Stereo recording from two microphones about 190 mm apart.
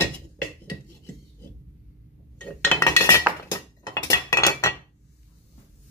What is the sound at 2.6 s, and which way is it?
Chink, 15° left (ahead or behind).